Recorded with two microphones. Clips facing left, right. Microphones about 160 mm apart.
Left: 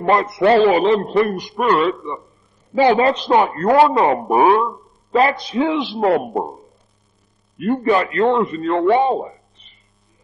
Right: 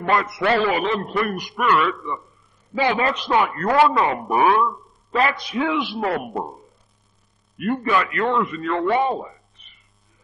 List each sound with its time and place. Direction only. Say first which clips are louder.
0.0 s a man's voice: left 6 dB; 30° left (ahead or behind)
7.5 s a man's voice: left 5 dB; 25° left (ahead or behind)